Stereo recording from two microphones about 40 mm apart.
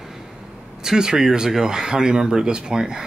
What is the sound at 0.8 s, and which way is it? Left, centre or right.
Speech, centre.